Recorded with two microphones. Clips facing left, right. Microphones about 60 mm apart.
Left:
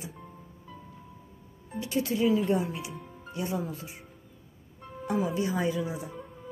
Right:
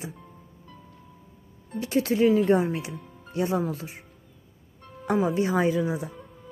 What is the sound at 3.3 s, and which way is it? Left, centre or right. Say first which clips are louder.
Speech: right 7 dB; right.